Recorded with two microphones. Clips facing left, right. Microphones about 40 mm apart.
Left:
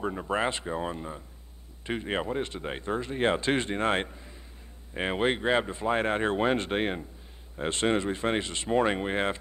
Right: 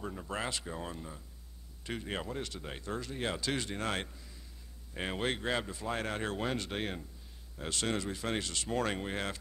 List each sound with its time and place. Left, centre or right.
0.0 s speech: left